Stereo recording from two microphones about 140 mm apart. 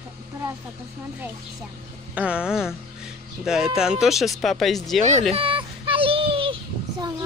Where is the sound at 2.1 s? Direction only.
10° right (ahead or behind).